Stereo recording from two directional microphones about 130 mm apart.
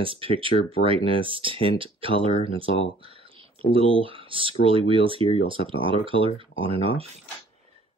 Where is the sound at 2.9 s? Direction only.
45° right (ahead or behind).